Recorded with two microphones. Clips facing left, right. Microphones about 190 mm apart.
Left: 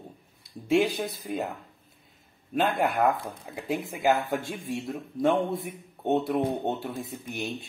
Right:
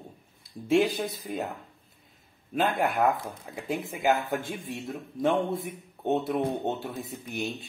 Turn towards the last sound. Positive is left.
turn(degrees=0)  # may be behind; listen again after turning